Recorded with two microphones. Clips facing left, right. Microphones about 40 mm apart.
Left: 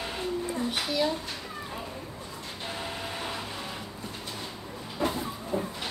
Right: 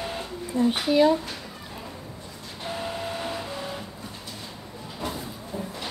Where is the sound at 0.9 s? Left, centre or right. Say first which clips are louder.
Right 10 dB; right.